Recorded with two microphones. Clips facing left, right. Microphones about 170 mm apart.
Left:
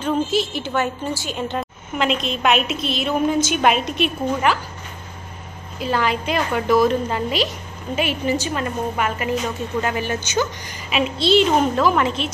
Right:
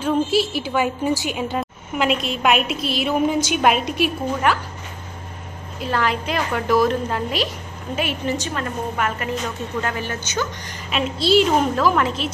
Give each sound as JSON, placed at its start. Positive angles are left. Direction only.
{"t": 0.0, "sound": "a woman's voice", "side_deg": -5}
{"t": 5.8, "sound": "a woman's voice", "side_deg": 0}